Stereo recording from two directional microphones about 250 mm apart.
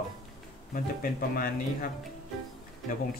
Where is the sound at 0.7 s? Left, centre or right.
Left.